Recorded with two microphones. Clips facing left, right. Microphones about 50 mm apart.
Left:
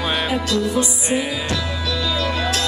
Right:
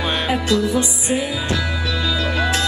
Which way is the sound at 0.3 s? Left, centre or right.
Right.